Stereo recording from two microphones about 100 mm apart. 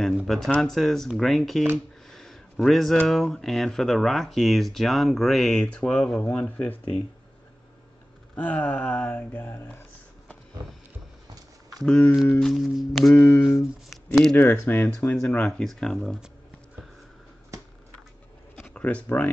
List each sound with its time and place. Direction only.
0.3 s speech: 5° left (ahead or behind)
2.0 s a sound: 5° left (ahead or behind)
3.1 s speech: centre (ahead or behind)
8.4 s speech: 15° left (ahead or behind)
11.8 s speech: centre (ahead or behind)
13.8 s a sound: centre (ahead or behind)
14.3 s speech: 25° left (ahead or behind)
15.3 s speech: 10° left (ahead or behind)
18.6 s speech: 10° left (ahead or behind)